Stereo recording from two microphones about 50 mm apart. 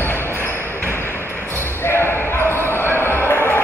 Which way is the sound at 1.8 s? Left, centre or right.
Left.